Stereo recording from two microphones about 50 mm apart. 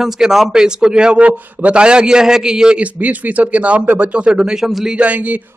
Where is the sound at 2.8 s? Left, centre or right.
Right.